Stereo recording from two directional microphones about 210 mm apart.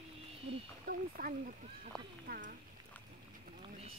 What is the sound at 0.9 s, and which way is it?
Speech, 40° right (ahead or behind).